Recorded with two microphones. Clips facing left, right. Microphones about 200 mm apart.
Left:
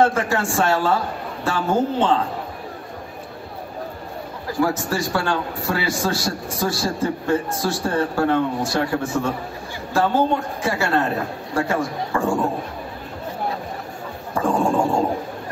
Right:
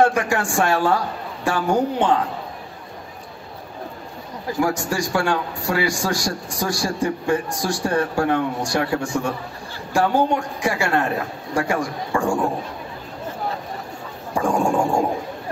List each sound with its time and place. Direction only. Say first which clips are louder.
0.0 s a man's voice: even; 15° right (ahead or behind)
4.5 s a man's voice: even; 15° right (ahead or behind)
14.3 s speech: even; 15° right (ahead or behind)